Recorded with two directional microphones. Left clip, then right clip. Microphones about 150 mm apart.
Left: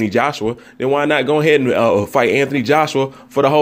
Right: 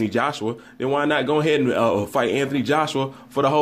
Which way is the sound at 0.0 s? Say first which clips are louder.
Left 6 dB; 40° left (ahead or behind).